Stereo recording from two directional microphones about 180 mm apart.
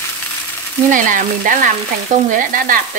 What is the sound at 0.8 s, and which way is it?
Speech, 45° right (ahead or behind).